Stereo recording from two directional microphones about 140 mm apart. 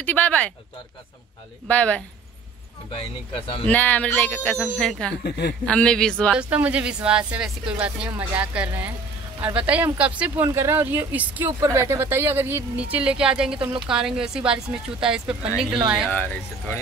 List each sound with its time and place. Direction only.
0.0 s a man's voice: 10° left (ahead or behind)
1.7 s a man's voice: 10° left (ahead or behind)
2.9 s speech: 40° left (ahead or behind)
3.6 s a man's voice: 10° left (ahead or behind)
6.3 s a woman's voice: 10° right (ahead or behind)